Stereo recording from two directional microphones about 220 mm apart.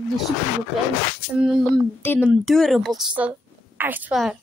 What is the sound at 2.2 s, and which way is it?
A woman's voice, 5° right (ahead or behind).